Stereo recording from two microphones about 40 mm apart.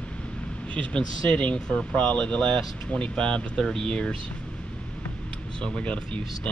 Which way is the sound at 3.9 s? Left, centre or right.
Left.